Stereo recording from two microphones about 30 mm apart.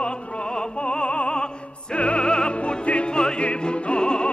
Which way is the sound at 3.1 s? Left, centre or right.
Left.